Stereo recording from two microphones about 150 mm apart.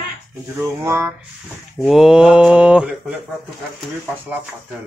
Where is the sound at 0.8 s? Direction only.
20° right (ahead or behind).